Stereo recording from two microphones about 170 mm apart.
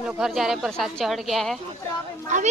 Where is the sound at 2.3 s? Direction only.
45° right (ahead or behind).